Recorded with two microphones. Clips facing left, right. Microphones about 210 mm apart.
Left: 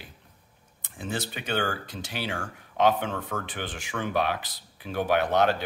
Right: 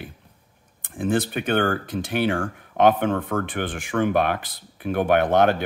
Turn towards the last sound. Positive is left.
turn(degrees=-55)  # may be behind; listen again after turning